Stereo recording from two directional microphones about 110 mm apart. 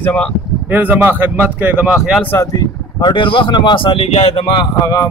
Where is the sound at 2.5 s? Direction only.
35° left (ahead or behind); by 4.4 s 65° left (ahead or behind).